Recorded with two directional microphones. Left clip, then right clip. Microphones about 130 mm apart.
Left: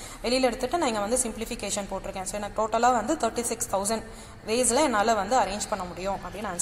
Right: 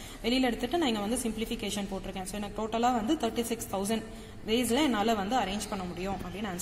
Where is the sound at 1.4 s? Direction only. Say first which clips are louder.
Left 2 dB; 35° left (ahead or behind).